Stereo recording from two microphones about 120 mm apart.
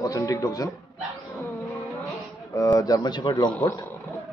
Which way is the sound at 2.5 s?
30° left (ahead or behind).